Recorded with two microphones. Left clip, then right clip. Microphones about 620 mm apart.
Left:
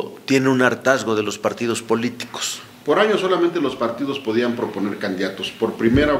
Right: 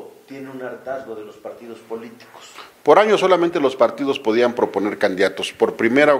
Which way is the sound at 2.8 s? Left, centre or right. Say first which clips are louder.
Right 4 dB; right.